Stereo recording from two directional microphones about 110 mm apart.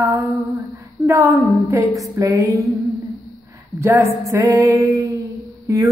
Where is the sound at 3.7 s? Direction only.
25° right (ahead or behind).